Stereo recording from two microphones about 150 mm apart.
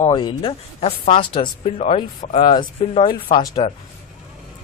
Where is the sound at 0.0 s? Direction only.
30° left (ahead or behind).